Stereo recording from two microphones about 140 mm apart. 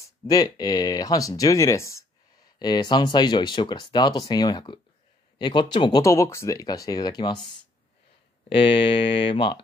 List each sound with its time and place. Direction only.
0.3 s speech: 25° left (ahead or behind)
8.5 s speech: 40° left (ahead or behind)